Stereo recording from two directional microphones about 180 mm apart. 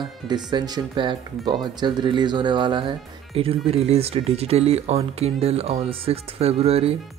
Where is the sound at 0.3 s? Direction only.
25° right (ahead or behind).